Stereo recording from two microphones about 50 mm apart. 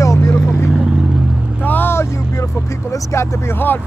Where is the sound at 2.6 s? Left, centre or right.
Left.